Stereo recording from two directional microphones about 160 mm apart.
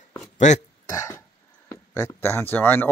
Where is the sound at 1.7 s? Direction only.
20° left (ahead or behind).